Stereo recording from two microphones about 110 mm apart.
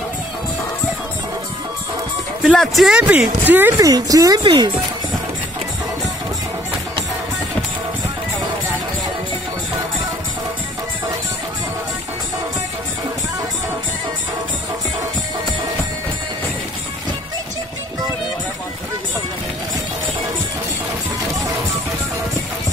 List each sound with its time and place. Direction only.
2.4 s speech: centre (ahead or behind)
3.0 s speech: 15° right (ahead or behind)
3.7 s speech: 30° right (ahead or behind)